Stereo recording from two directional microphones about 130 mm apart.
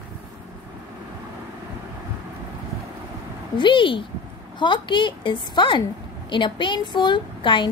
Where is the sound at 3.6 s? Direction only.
40° left (ahead or behind).